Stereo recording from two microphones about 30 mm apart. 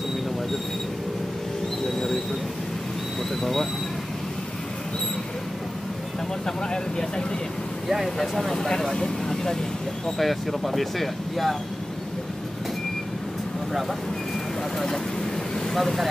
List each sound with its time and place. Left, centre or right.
6.4 s speech: left
8.2 s speech: centre
8.5 s speech: centre
10.0 s speech: centre
15.7 s speech: centre